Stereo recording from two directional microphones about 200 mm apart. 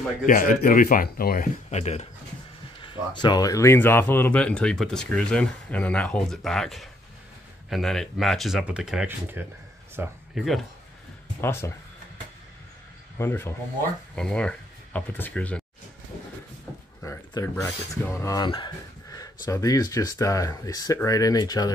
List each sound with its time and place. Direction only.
0.3 s speech: 45° left (ahead or behind); by 10.1 s 10° right (ahead or behind)
10.3 s speech: centre (ahead or behind)
11.4 s speech: 10° left (ahead or behind)
13.2 s speech: 10° left (ahead or behind)
17.0 s speech: 15° left (ahead or behind)